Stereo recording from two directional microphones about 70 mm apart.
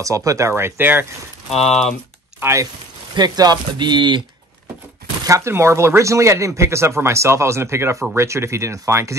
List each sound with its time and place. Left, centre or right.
0.0 s speech: right
1.6 s speech: centre
2.4 s speech: right
3.2 s speech: right
5.2 s chopping: right
5.5 s speech: right